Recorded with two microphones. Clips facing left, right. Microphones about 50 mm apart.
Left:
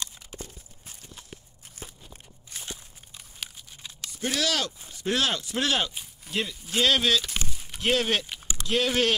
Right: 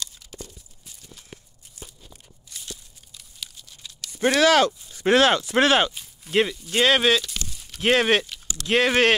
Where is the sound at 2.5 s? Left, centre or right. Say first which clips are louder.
Left 1 dB; left.